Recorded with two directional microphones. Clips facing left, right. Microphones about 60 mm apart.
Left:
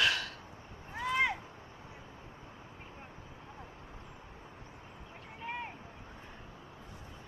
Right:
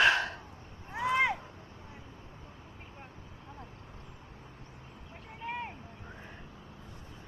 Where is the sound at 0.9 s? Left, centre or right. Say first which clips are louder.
Right 3 dB; centre.